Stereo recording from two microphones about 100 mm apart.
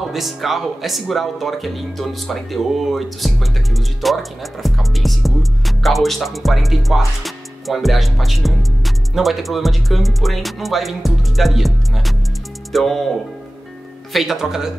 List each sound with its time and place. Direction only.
0.0 s speech: centre (ahead or behind)
14.1 s speech: 5° right (ahead or behind)